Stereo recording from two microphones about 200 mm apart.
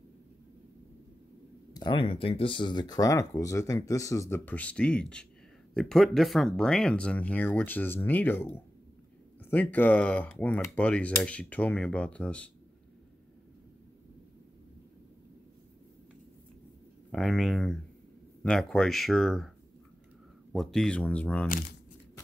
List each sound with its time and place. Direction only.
1.7 s speech: 20° left (ahead or behind); by 12.4 s 5° left (ahead or behind)
17.1 s speech: centre (ahead or behind)
20.5 s speech: centre (ahead or behind)